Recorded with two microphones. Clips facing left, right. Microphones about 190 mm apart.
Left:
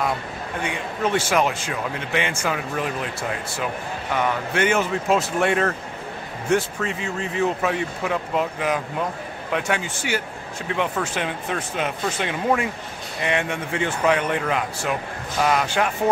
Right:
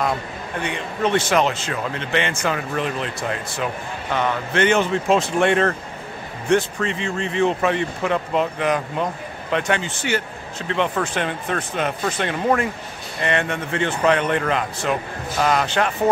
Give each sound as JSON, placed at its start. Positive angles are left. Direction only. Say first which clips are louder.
{"t": 0.7, "sound": "a man's voice", "louder": "right 2 dB", "side_deg": 10}